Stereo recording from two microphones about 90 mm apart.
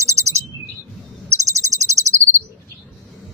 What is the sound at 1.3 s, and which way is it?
Cricket, 35° right (ahead or behind).